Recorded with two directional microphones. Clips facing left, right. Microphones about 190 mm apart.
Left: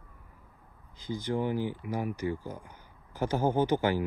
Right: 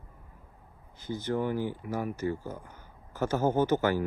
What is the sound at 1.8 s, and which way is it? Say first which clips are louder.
Speech: even; 45° right (ahead or behind).